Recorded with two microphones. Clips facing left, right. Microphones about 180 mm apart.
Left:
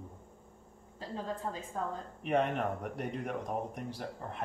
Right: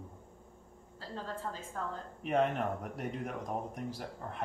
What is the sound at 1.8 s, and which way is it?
Speech, 20° left (ahead or behind).